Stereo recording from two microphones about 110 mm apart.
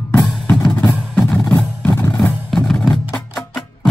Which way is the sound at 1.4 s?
20° left (ahead or behind).